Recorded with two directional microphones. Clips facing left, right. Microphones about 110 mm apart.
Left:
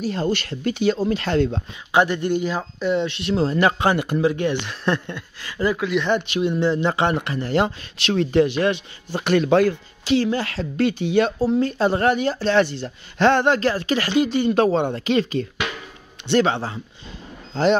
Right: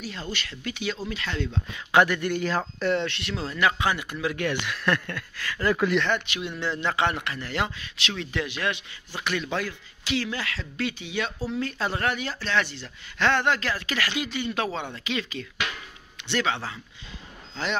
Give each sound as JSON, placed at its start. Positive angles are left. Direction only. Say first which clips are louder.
{"t": 0.0, "sound": "speech", "louder": "left 12 dB", "side_deg": 45}
{"t": 1.9, "sound": "speech", "louder": "left 3 dB", "side_deg": 20}
{"t": 3.3, "sound": "speech", "louder": "left 7 dB", "side_deg": 35}
{"t": 4.2, "sound": "speech", "louder": "left 7 dB", "side_deg": 25}
{"t": 5.7, "sound": "speech", "louder": "left 1 dB", "side_deg": 5}
{"t": 6.1, "sound": "speech", "louder": "left 9 dB", "side_deg": 35}
{"t": 6.7, "sound": "speech", "louder": "left 7 dB", "side_deg": 20}
{"t": 7.2, "sound": "speech", "louder": "left 8 dB", "side_deg": 35}
{"t": 9.2, "sound": "speech", "louder": "left 12 dB", "side_deg": 55}
{"t": 12.6, "sound": "speech", "louder": "left 11 dB", "side_deg": 55}
{"t": 13.2, "sound": "speech", "louder": "left 7 dB", "side_deg": 35}